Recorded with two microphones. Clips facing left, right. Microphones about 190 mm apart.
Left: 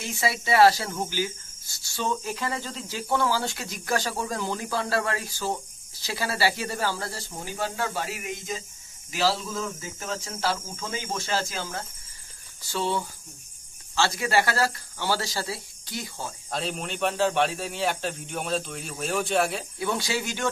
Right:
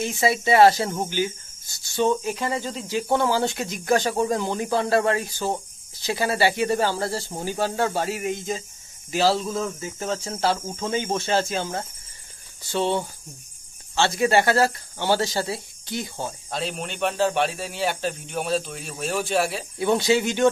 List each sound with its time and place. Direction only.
0.2 s speech: 25° right (ahead or behind)
16.4 s speech: centre (ahead or behind)
19.8 s speech: 25° right (ahead or behind)